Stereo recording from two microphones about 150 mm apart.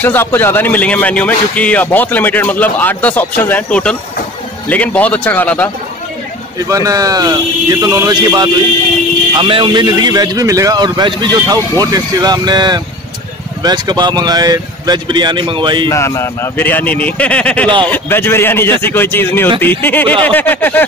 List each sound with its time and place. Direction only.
0.0 s speech: 15° left (ahead or behind)
6.7 s speech: 20° right (ahead or behind)
15.9 s speech: 20° left (ahead or behind)